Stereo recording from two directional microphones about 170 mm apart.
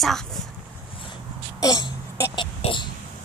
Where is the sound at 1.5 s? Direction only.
20° left (ahead or behind).